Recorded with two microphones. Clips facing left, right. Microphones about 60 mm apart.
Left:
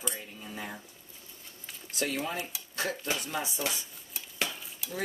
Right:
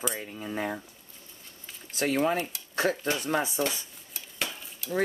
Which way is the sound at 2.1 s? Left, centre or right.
Right.